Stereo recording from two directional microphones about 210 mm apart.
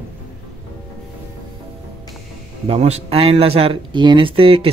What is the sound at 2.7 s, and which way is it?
Speech, 30° right (ahead or behind).